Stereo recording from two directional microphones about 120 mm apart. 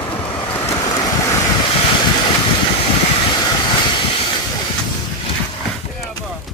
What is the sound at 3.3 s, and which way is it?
Vehicle, 40° left (ahead or behind).